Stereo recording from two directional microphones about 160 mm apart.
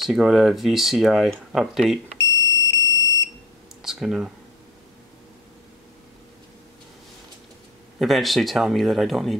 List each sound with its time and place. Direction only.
0.0 s speech: centre (ahead or behind)
2.1 s smoke detector: 15° left (ahead or behind)
3.8 s speech: centre (ahead or behind)
8.0 s speech: centre (ahead or behind)